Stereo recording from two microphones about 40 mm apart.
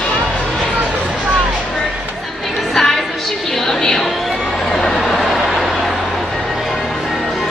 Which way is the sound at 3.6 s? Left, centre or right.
Centre.